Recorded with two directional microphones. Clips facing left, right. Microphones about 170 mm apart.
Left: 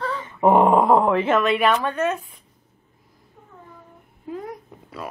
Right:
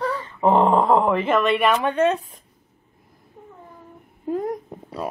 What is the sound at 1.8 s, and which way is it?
Speech, 25° right (ahead or behind).